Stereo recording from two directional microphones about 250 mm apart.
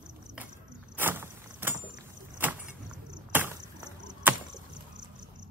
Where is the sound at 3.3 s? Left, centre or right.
Centre.